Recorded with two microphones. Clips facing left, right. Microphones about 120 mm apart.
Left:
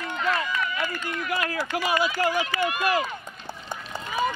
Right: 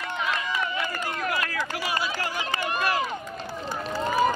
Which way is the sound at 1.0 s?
35° right (ahead or behind).